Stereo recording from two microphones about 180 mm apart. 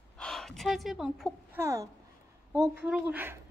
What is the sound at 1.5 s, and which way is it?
A woman's voice, 15° right (ahead or behind).